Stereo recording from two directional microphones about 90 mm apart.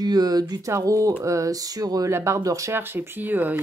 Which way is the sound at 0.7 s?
35° right (ahead or behind).